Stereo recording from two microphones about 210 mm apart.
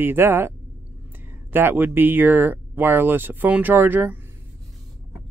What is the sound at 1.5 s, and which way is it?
Speech, 10° right (ahead or behind).